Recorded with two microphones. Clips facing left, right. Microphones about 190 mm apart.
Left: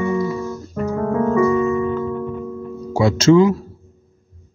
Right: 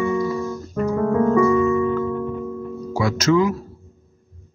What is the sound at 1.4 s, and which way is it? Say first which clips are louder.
Music: even; 20° left (ahead or behind).